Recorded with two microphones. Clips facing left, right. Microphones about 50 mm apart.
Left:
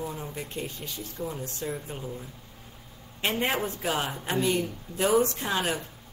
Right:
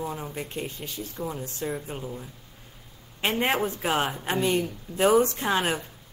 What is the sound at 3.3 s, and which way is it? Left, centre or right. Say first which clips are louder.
Speech: right 3 dB; right.